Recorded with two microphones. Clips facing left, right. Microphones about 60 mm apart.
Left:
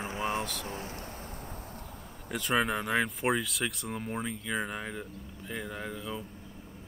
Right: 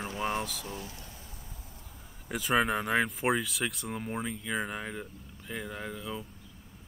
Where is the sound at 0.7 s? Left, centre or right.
Left.